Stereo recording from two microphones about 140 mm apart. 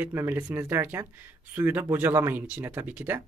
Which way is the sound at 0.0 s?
15° right (ahead or behind).